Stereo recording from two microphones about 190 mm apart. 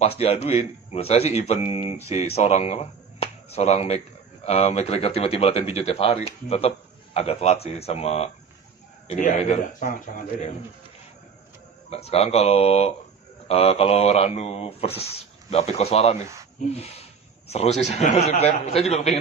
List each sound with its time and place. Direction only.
0.0 s speech: 30° left (ahead or behind)
11.9 s speech: 35° left (ahead or behind)
17.5 s speech: 35° left (ahead or behind)